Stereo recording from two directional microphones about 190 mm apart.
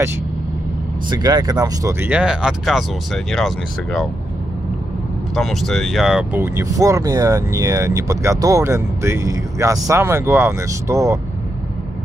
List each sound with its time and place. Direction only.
1.1 s speech: 20° right (ahead or behind); by 4.1 s centre (ahead or behind)
5.3 s speech: centre (ahead or behind); by 11.1 s 15° right (ahead or behind)